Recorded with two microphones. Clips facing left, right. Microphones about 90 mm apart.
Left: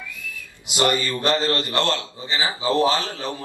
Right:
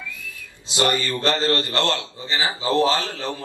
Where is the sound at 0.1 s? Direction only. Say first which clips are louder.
Left 1 dB; 20° left (ahead or behind).